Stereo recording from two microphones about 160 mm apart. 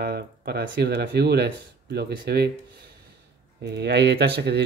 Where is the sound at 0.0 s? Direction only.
80° right.